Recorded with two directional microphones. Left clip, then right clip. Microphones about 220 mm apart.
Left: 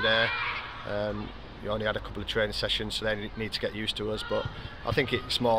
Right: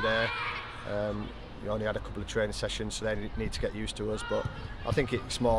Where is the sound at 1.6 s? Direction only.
5° right (ahead or behind).